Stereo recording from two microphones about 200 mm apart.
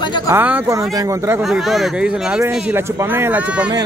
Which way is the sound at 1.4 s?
Centre (ahead or behind).